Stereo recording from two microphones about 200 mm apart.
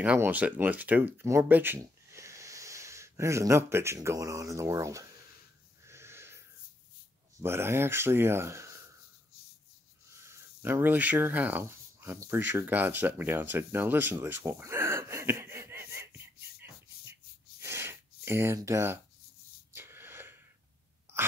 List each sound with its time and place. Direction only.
0.0 s speech: 10° right (ahead or behind)
5.9 s wheeze: 15° right (ahead or behind)
7.3 s speech: 10° right (ahead or behind)
10.0 s speech: 15° right (ahead or behind)
17.6 s a sound: 10° right (ahead or behind)
19.7 s wheeze: 10° right (ahead or behind)